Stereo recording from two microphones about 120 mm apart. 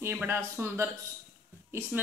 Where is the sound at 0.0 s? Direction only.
15° right (ahead or behind).